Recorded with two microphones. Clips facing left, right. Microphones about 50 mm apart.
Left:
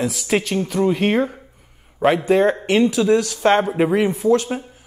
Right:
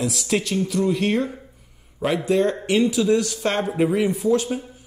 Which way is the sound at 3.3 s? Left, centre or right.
Left.